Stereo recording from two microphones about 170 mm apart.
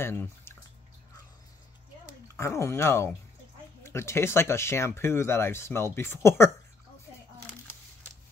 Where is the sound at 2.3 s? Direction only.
15° left (ahead or behind).